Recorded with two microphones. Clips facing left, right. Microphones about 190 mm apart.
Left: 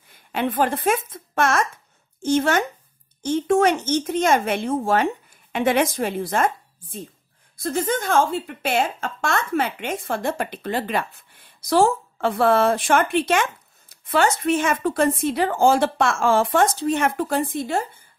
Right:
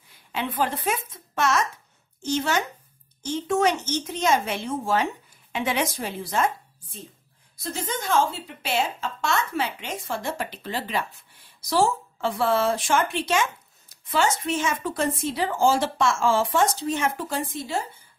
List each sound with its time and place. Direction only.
0.3 s a woman's voice: 50° left (ahead or behind)